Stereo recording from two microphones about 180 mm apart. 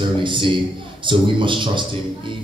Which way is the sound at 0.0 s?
25° right (ahead or behind).